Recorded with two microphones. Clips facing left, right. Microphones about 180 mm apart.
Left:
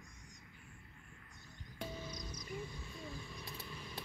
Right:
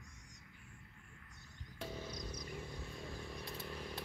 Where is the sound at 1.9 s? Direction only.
60° right (ahead or behind).